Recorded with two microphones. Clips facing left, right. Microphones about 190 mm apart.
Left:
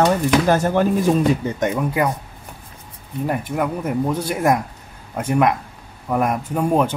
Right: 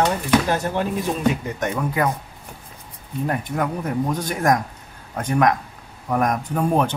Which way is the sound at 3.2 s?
5° left (ahead or behind).